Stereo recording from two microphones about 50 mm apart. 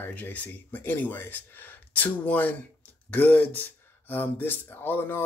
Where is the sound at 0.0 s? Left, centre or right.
Left.